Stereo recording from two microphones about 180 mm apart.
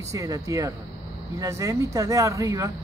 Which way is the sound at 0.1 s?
20° right (ahead or behind).